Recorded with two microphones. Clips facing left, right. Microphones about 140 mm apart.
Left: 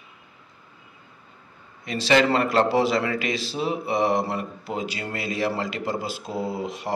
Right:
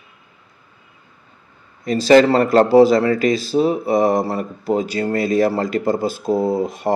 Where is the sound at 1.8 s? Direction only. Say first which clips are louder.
Right 8 dB; 40° right (ahead or behind).